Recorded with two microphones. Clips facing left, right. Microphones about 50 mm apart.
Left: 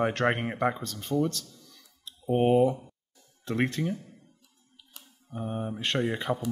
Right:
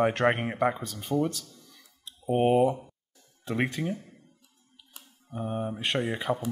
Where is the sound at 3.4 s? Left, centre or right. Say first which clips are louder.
Left 1 dB; centre.